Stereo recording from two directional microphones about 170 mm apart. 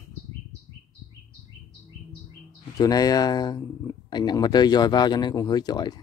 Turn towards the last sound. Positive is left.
turn(degrees=25)  # may be behind; listen again after turning